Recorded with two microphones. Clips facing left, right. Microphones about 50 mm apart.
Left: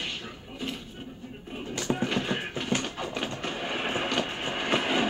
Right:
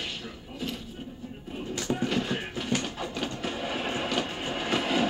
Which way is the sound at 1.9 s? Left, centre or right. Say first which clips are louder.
Even; centre.